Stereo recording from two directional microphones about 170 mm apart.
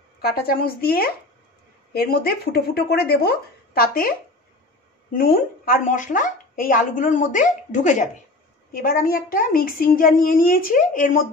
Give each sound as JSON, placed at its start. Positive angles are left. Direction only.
{"t": 0.2, "sound": "a child's voice", "side_deg": 65}
{"t": 5.1, "sound": "speech", "side_deg": 55}
{"t": 8.7, "sound": "a child's voice", "side_deg": 60}